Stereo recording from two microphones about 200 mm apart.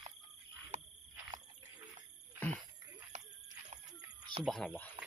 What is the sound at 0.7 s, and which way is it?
Frog, 35° right (ahead or behind).